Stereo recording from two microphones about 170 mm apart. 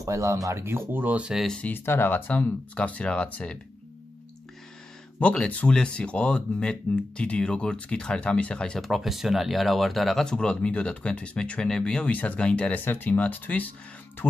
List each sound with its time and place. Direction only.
0.0 s speech: 15° right (ahead or behind); by 3.5 s 5° left (ahead or behind)
5.2 s speech: 5° left (ahead or behind)